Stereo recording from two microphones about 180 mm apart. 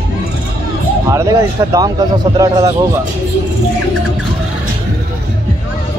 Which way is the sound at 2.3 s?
20° right (ahead or behind).